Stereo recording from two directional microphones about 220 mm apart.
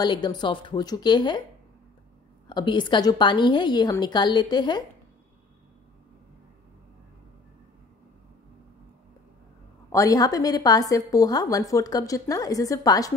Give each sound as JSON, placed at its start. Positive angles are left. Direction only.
{"t": 0.0, "sound": "a woman's voice", "side_deg": 20}
{"t": 2.4, "sound": "a woman's voice", "side_deg": 20}
{"t": 9.8, "sound": "a woman's voice", "side_deg": 15}